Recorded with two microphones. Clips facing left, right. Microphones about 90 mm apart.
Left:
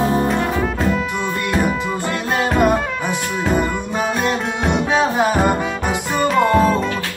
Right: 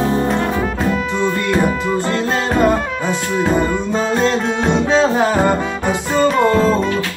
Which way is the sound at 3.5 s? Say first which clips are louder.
Right 3 dB; 15° left (ahead or behind).